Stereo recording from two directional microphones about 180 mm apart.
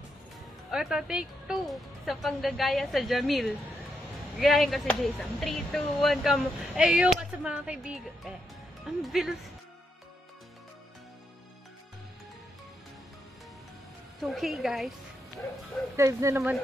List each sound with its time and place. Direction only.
0.7 s speech: 5° right (ahead or behind)
14.2 s speech: centre (ahead or behind)
16.0 s speech: 15° right (ahead or behind)